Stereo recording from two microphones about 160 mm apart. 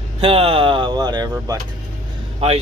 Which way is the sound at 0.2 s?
35° right (ahead or behind).